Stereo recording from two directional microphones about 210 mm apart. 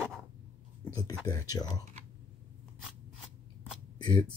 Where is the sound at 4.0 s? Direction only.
20° left (ahead or behind).